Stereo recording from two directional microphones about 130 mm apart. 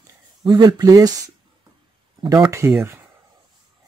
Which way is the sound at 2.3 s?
25° right (ahead or behind).